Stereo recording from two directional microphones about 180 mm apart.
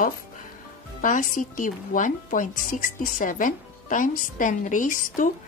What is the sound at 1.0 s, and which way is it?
Speech, 45° left (ahead or behind).